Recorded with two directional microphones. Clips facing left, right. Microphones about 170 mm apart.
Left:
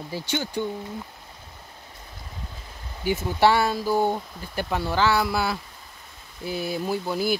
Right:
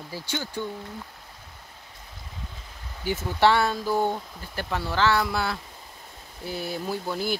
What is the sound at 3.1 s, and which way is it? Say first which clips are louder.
Speech: left 1 dB; 10° left (ahead or behind).